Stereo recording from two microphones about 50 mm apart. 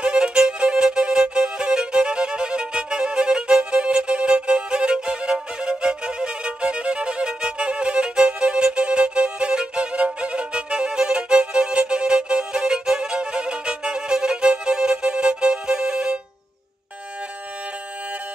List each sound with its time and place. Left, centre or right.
0.0 s violin: centre